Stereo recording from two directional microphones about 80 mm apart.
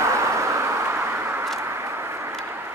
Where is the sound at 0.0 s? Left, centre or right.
Right.